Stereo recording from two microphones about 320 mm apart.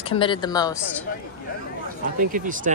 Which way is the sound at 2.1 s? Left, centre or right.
Right.